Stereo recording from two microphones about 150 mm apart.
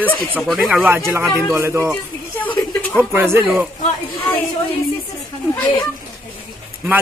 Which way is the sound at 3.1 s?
15° right (ahead or behind).